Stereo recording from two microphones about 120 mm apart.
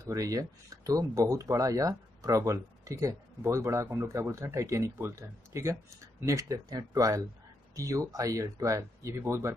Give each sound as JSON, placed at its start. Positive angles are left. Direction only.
{"t": 0.0, "sound": "speech", "side_deg": -30}